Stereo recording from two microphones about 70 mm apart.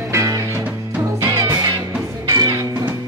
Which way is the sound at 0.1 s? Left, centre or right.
Right.